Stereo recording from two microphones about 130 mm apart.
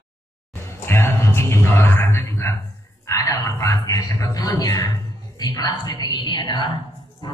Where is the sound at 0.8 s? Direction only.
20° left (ahead or behind).